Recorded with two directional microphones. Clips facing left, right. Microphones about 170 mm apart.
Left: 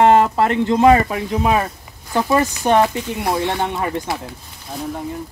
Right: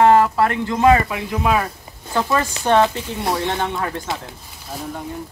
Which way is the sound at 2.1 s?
15° left (ahead or behind).